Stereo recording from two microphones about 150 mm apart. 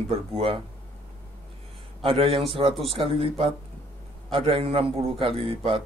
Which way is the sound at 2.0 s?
35° right (ahead or behind).